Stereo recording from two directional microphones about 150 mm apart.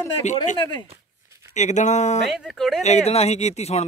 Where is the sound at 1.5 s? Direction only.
50° left (ahead or behind).